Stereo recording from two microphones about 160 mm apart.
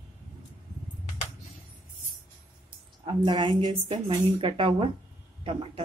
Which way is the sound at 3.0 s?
30° right (ahead or behind).